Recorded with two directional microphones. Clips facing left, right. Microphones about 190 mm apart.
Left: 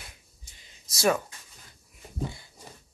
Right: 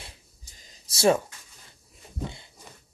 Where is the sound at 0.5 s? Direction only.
40° right (ahead or behind).